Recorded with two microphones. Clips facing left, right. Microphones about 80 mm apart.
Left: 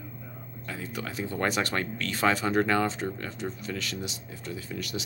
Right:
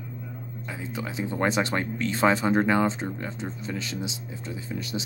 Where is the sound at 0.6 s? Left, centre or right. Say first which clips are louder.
Right 1 dB; centre.